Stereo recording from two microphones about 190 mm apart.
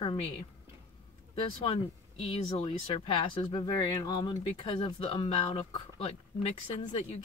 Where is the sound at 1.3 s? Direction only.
30° left (ahead or behind).